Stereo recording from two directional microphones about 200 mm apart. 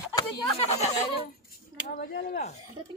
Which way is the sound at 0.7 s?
30° left (ahead or behind).